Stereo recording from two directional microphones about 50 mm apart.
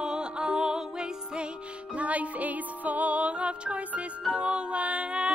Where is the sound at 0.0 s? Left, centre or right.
Centre.